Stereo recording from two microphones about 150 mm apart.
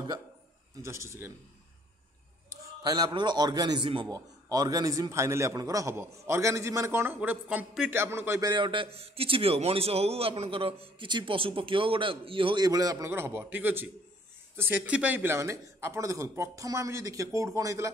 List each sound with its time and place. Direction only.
0.8 s speech: 20° right (ahead or behind)
2.5 s a man's voice: 25° right (ahead or behind)